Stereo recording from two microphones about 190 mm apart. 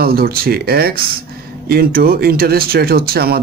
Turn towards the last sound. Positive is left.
turn(degrees=-55)  # may be behind; listen again after turning